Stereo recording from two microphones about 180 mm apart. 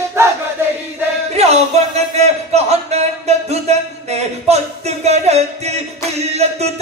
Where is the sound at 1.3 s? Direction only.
35° right (ahead or behind).